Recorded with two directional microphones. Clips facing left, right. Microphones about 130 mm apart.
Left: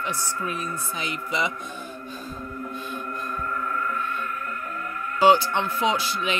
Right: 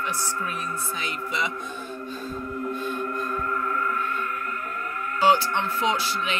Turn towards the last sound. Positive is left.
turn(degrees=20)  # may be behind; listen again after turning